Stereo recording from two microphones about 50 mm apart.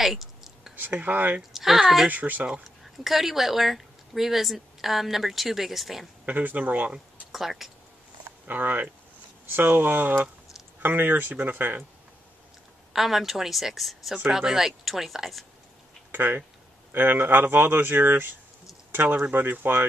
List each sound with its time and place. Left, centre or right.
0.0 s a sound: centre
0.7 s speech: right
1.5 s speech: centre
2.0 s speech: right
3.0 s speech: centre
6.2 s speech: right
7.3 s speech: centre
8.5 s speech: right
12.9 s speech: centre
16.1 s speech: right